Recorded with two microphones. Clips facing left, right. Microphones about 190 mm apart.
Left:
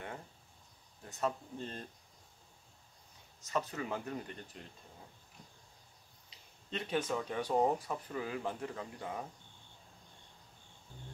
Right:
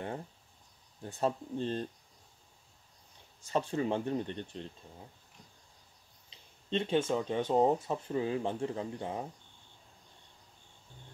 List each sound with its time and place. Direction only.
1.0 s speech: 30° right (ahead or behind)
3.4 s speech: 30° right (ahead or behind)
6.3 s speech: 25° right (ahead or behind)